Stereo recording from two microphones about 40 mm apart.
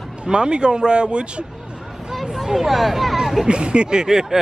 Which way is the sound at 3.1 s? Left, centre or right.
Centre.